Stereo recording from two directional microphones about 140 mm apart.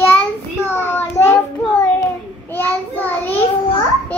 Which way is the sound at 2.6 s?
15° left (ahead or behind).